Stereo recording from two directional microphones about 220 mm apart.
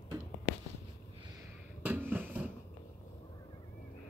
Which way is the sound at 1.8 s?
10° right (ahead or behind).